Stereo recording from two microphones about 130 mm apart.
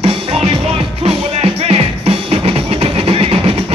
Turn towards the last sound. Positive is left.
turn(degrees=-50)  # may be behind; listen again after turning